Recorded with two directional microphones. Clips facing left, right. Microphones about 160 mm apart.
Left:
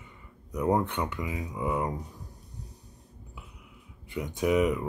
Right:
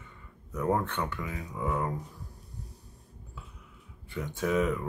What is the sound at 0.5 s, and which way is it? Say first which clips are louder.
Speech: left 2 dB; 15° left (ahead or behind).